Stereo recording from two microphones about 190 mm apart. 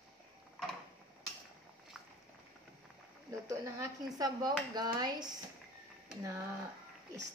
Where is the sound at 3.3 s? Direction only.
15° right (ahead or behind).